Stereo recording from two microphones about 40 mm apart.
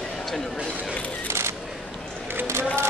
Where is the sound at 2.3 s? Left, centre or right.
Right.